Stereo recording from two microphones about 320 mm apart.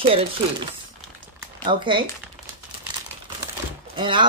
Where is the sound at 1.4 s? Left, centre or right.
Centre.